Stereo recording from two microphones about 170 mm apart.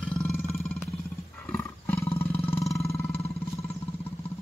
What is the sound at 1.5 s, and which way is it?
Roar, 15° left (ahead or behind).